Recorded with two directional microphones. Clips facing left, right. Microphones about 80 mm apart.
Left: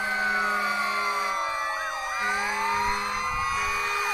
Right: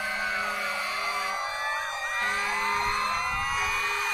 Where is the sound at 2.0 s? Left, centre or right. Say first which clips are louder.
Left 2 dB; centre.